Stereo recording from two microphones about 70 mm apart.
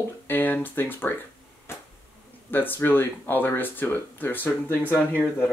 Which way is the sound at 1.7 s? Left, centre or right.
Left.